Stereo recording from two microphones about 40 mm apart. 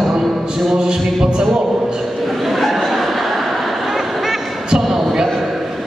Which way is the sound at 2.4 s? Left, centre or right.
Centre.